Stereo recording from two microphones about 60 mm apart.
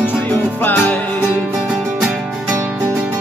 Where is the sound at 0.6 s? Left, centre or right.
Left.